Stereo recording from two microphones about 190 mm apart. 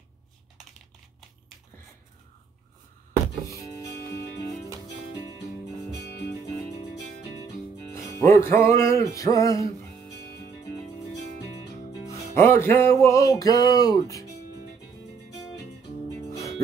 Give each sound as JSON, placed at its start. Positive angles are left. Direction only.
{"t": 3.4, "sound": "music", "side_deg": 15}
{"t": 8.3, "sound": "music", "side_deg": 15}
{"t": 12.4, "sound": "music", "side_deg": 15}
{"t": 16.3, "sound": "music", "side_deg": 15}